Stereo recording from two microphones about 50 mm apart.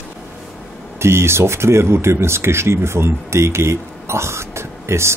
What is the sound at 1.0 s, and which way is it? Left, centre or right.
Speech, right.